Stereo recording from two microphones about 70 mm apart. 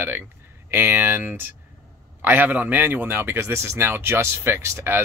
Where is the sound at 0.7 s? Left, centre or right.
Right.